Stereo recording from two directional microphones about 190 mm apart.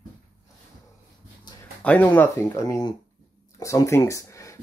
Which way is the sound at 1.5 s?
20° left (ahead or behind).